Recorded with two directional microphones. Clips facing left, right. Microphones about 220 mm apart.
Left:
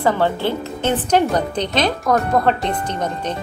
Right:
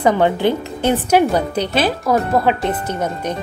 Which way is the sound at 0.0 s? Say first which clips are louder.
Right 3 dB; 15° right (ahead or behind).